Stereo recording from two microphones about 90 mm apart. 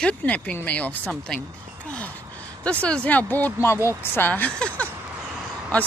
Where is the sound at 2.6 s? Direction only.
15° left (ahead or behind).